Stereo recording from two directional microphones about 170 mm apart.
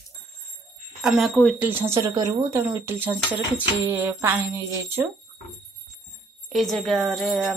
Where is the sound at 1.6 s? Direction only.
15° right (ahead or behind).